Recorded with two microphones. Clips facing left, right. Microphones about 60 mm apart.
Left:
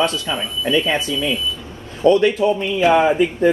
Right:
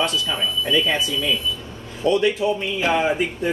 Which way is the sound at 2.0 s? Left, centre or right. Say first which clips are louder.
Left 5 dB; left.